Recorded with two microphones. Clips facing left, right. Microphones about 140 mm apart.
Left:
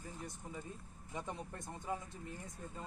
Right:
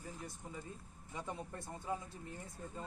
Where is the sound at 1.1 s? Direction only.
20° left (ahead or behind).